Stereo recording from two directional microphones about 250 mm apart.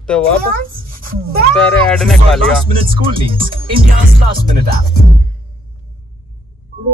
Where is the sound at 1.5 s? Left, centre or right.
Centre.